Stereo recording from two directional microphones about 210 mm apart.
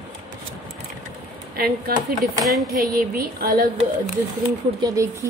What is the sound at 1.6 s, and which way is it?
Speech, 45° right (ahead or behind).